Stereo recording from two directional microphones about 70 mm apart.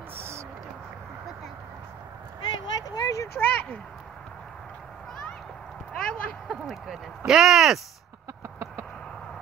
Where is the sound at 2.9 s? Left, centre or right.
Left.